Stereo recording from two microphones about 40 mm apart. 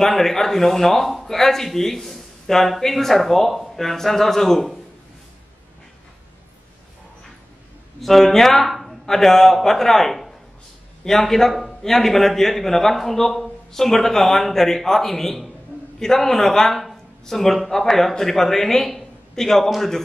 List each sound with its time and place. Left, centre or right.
0.0 s a man's voice: centre
8.0 s a man's voice: centre